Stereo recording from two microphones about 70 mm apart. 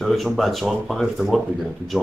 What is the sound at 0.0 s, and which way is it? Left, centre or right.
Speech, centre.